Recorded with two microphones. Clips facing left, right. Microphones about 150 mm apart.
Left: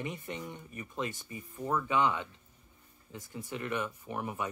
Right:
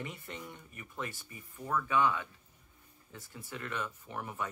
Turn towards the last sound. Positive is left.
turn(degrees=15)  # may be behind; listen again after turning